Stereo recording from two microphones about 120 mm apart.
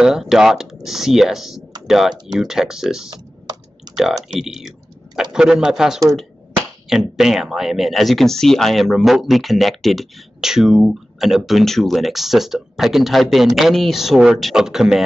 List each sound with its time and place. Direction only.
0.0 s speech: 5° right (ahead or behind)
3.1 s typing: 35° right (ahead or behind)
3.9 s speech: 5° right (ahead or behind)